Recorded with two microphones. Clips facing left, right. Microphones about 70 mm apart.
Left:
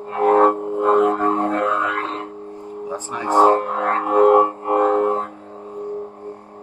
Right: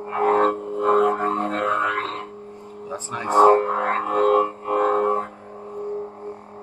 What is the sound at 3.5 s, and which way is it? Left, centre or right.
Music, centre.